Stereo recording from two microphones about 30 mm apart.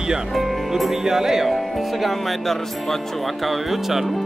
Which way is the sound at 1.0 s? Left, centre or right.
Centre.